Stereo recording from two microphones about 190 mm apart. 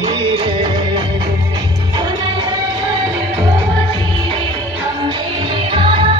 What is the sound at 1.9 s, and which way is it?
Music, 25° right (ahead or behind).